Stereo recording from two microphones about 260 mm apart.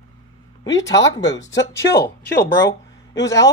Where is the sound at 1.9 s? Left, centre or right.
Left.